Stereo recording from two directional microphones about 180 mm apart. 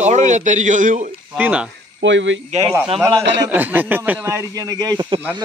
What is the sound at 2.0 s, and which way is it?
Speech, 90° right.